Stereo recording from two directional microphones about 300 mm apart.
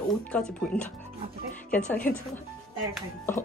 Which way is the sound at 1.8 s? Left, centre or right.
Left.